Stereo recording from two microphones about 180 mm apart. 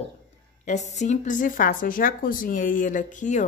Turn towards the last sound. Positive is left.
turn(degrees=45)  # may be behind; listen again after turning